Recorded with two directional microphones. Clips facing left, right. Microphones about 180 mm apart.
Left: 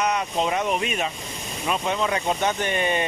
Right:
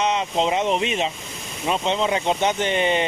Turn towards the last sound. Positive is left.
turn(degrees=-20)  # may be behind; listen again after turning